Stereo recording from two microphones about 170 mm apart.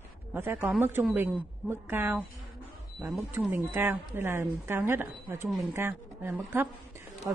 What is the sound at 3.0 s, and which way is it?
Speech, centre (ahead or behind).